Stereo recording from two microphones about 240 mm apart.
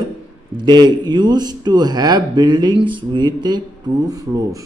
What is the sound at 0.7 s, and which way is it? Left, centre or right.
A man's voice, centre.